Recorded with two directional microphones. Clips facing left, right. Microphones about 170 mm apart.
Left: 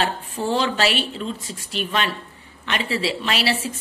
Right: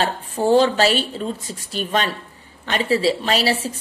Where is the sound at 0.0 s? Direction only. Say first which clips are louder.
Right 4 dB; 45° right (ahead or behind).